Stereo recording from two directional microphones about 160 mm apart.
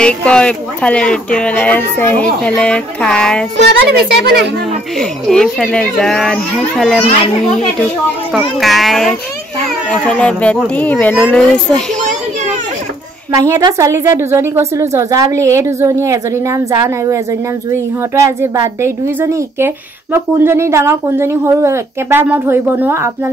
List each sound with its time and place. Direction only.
0.0 s a child's voice: 5° left (ahead or behind)
3.5 s speech: 90° right
4.9 s a child's voice: centre (ahead or behind)
8.3 s a child's voice: centre (ahead or behind)
13.3 s a woman's voice: 20° right (ahead or behind)